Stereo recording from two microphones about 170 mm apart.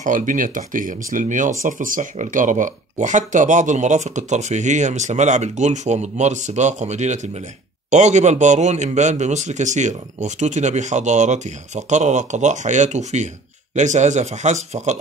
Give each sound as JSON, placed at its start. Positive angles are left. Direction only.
{"t": 0.0, "sound": "speech", "side_deg": -50}